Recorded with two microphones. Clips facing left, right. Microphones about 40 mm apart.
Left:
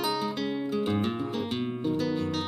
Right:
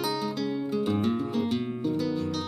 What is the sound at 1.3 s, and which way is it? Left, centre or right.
Guitar, centre.